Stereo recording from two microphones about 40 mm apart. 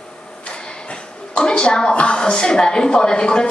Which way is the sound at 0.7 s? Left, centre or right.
Left.